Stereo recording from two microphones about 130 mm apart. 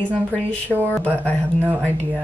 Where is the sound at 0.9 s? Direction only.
10° left (ahead or behind).